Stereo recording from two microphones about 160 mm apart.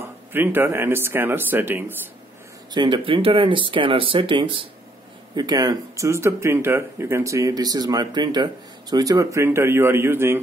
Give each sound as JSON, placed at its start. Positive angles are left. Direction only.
{"t": 0.0, "sound": "speech", "side_deg": -15}
{"t": 2.7, "sound": "speech", "side_deg": -30}